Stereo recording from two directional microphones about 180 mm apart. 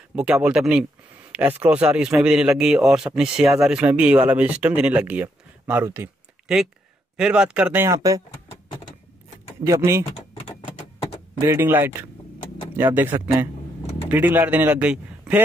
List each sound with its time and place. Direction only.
0.1 s a man's voice: 5° right (ahead or behind)
9.6 s a man's voice: 15° right (ahead or behind)
11.4 s a man's voice: 15° right (ahead or behind)